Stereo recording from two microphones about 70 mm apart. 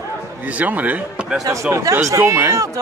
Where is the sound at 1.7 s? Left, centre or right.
Right.